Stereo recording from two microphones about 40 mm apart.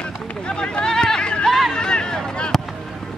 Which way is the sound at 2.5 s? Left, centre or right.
Centre.